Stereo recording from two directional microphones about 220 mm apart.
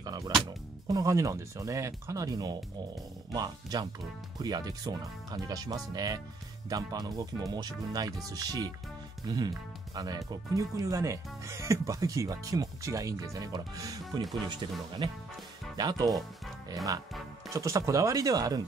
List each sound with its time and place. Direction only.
0.0 s music: 15° right (ahead or behind)
0.8 s speech: 15° right (ahead or behind)